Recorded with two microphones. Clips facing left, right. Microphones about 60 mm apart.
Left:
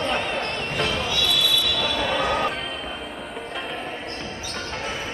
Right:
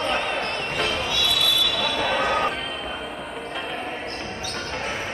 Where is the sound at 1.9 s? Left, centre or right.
Right.